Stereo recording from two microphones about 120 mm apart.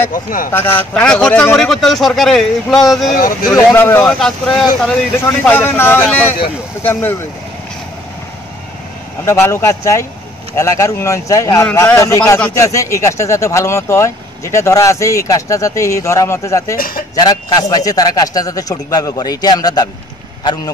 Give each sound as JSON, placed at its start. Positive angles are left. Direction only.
{"t": 0.0, "sound": "speech", "side_deg": 20}
{"t": 3.5, "sound": "speech", "side_deg": 20}
{"t": 4.1, "sound": "speech", "side_deg": 5}
{"t": 5.4, "sound": "speech", "side_deg": 15}
{"t": 9.2, "sound": "speech", "side_deg": 25}
{"t": 12.5, "sound": "speech", "side_deg": 25}